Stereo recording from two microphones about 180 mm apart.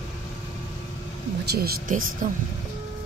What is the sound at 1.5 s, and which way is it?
Speech, 55° right (ahead or behind).